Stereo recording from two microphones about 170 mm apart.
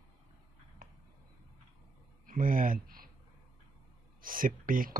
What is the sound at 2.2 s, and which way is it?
Speech, 55° right (ahead or behind).